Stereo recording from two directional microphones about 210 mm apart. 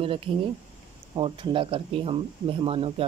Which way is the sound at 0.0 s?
25° right (ahead or behind).